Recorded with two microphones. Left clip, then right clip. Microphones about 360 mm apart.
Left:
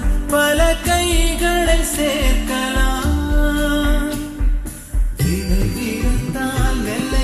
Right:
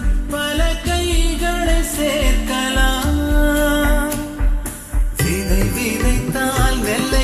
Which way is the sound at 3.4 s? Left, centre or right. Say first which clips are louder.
Right 2 dB; centre.